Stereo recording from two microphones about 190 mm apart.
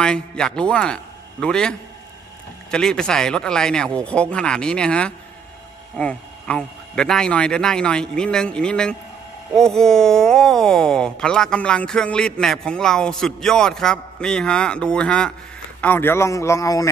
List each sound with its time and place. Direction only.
0.0 s speech: 5° left (ahead or behind)